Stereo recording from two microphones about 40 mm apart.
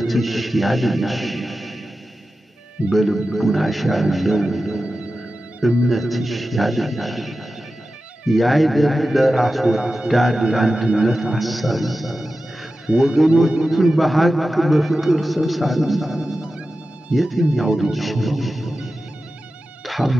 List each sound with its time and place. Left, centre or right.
0.0 s a man's voice: centre
2.9 s a man's voice: centre
4.8 s music: right
5.9 s a man's voice: centre
17.6 s speech: centre
17.9 s music: centre